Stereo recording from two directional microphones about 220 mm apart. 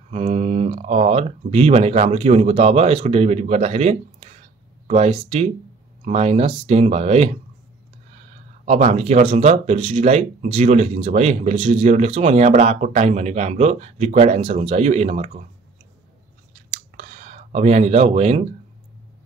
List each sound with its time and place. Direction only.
0.1 s speech: 30° right (ahead or behind)
8.6 s speech: 30° right (ahead or behind)
16.9 s a sound: 35° right (ahead or behind)